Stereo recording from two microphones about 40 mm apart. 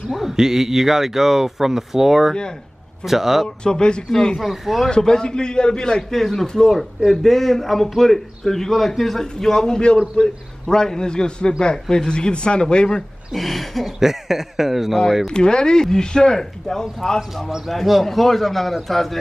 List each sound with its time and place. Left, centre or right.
0.1 s a man's voice: centre
3.4 s speech: left
4.4 s a man's voice: centre
4.8 s speech: centre
6.1 s a man's voice: centre
13.3 s a man's voice: centre
15.3 s speech: left
17.6 s a man's voice: centre